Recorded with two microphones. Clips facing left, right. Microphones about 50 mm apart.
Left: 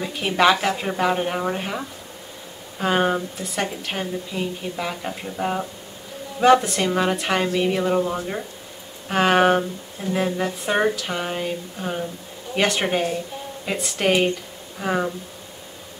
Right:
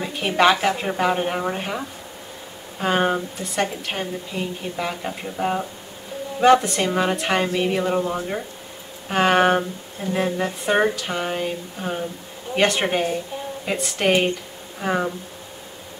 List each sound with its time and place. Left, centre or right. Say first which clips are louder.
0.0 s speech: right 1 dB; centre